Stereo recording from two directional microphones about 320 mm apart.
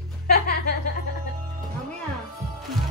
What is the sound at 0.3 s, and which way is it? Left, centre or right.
Music, left.